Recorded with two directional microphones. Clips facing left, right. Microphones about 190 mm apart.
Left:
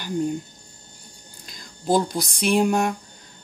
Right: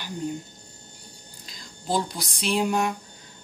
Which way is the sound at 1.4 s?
50° left (ahead or behind).